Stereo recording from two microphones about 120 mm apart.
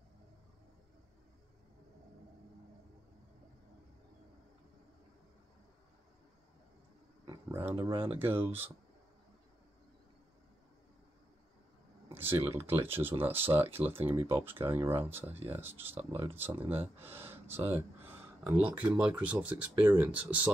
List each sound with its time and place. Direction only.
7.4 s speech: 20° right (ahead or behind)
12.1 s speech: 20° right (ahead or behind)